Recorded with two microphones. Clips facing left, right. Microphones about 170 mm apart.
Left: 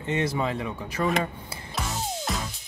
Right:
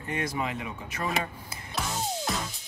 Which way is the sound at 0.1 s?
30° left (ahead or behind).